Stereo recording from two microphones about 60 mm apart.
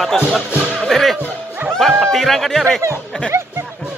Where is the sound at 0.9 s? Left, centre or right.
Centre.